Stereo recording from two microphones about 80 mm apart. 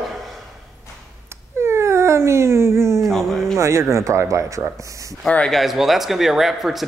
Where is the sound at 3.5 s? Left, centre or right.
Right.